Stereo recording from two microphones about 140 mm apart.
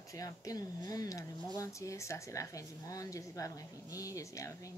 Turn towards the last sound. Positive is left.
turn(degrees=20)  # may be behind; listen again after turning